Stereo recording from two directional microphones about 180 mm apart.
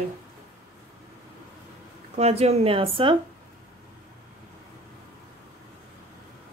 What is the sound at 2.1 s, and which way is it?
Speech, 35° right (ahead or behind).